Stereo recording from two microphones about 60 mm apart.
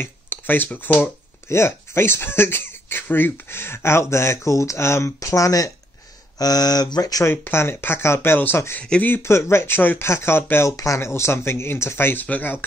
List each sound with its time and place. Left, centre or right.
0.0 s a sound: left
0.7 s speech: left
1.5 s speech: left
6.3 s speech: left
7.5 s speech: left